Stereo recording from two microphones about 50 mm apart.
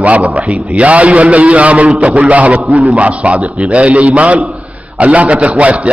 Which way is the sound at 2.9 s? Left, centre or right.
Right.